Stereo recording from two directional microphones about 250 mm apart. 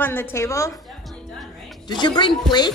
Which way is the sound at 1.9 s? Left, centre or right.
Centre.